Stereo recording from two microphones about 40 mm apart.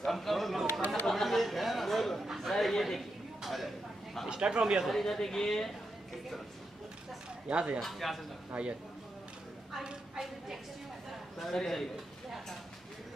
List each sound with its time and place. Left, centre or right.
0.0 s a man's voice: centre
1.0 s chatter: centre
2.3 s speech: centre
3.4 s a sound: centre
4.3 s speech: right
4.8 s a woman's voice: centre
7.4 s speech: right
7.8 s a man's voice: centre
8.5 s speech: right
11.1 s a man's voice: centre